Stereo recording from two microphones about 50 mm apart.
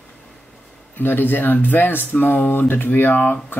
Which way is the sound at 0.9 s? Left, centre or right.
Left.